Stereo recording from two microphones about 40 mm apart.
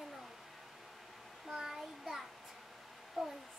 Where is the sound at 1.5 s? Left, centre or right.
Centre.